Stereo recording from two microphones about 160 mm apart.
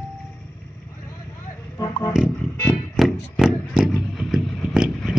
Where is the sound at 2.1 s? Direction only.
5° right (ahead or behind).